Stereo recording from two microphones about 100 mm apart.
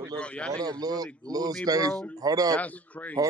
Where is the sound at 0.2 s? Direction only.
10° left (ahead or behind).